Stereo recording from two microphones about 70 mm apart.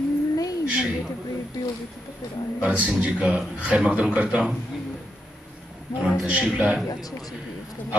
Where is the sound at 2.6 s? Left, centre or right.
Centre.